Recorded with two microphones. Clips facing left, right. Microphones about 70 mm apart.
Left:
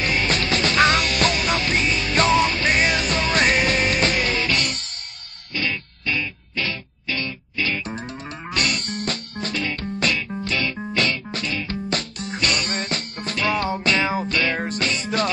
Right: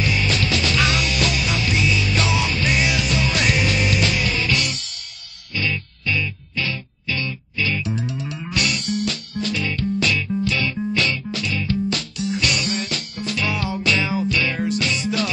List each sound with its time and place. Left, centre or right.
0.0 s music: left